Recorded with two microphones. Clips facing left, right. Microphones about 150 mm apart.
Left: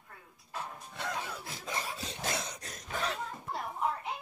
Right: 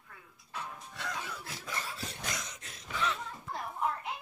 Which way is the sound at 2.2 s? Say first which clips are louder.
Left 5 dB; 30° left (ahead or behind).